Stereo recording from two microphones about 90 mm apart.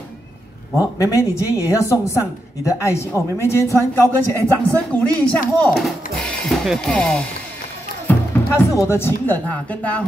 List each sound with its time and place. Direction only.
0.7 s a woman's voice: 35° left (ahead or behind); by 5.7 s 15° left (ahead or behind)
5.7 s speech: centre (ahead or behind)
7.0 s speech: 10° left (ahead or behind)
8.1 s speech: 30° left (ahead or behind)